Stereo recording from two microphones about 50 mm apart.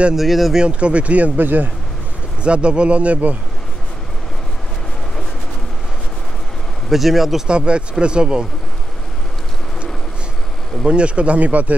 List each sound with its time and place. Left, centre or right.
0.1 s speech: centre
0.6 s speech: right
2.4 s speech: right
6.9 s speech: centre
7.4 s speech: right
10.9 s speech: right